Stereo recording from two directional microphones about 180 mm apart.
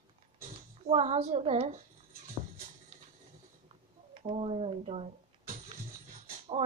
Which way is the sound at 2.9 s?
35° right (ahead or behind).